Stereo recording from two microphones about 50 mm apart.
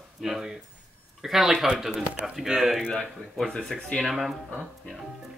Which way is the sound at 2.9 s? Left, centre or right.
Centre.